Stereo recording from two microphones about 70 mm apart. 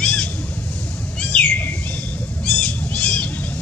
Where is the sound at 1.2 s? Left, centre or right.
Centre.